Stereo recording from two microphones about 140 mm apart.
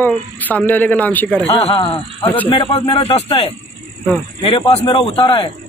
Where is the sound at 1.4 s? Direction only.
45° left (ahead or behind).